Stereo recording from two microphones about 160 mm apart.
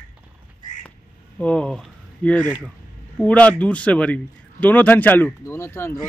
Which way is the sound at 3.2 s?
10° left (ahead or behind).